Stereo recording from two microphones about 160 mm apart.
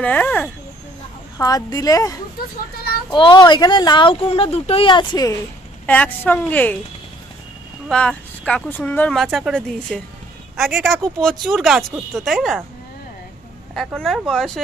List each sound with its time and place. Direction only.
0.0 s a woman's voice: 10° left (ahead or behind)
1.4 s speech: 20° left (ahead or behind)
5.9 s a woman's voice: 10° left (ahead or behind)
7.9 s speech: 5° left (ahead or behind)
13.9 s speech: centre (ahead or behind)